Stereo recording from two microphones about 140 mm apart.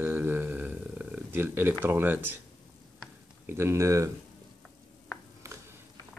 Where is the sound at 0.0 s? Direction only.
15° right (ahead or behind).